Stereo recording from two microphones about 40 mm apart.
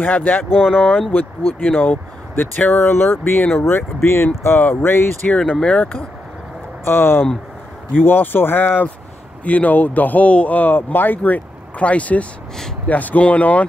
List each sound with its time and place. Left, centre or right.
0.0 s a man's voice: left
2.7 s speech: left
5.6 s speech: left
6.8 s speech: left
8.0 s speech: left
9.4 s a man's voice: left
10.6 s speech: left
11.8 s a man's voice: left